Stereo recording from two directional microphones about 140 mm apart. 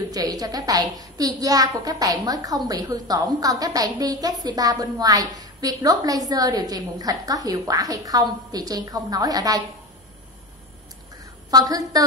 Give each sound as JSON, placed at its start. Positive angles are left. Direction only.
{"t": 0.1, "sound": "a woman's voice", "side_deg": -25}
{"t": 11.5, "sound": "a woman's voice", "side_deg": -25}